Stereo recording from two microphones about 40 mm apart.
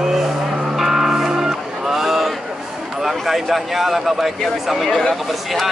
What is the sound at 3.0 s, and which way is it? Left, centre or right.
A man's voice, centre.